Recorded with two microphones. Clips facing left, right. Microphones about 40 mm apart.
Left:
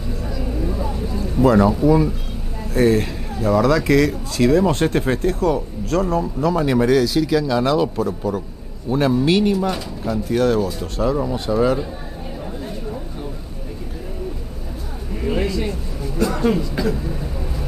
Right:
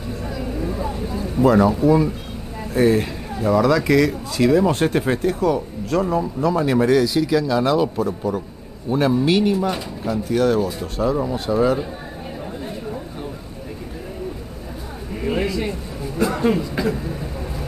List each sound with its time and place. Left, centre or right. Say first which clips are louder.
0.3 s vehicle: even; centre
1.1 s speech: left 1 dB; centre
6.5 s a man's voice: even; centre
9.1 s a man's voice: left 1 dB; centre
9.7 s a man's voice: even; centre
15.2 s a sound: even; centre
16.3 s speech: even; centre